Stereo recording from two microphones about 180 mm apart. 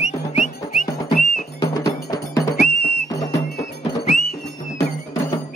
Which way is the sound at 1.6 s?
20° left (ahead or behind).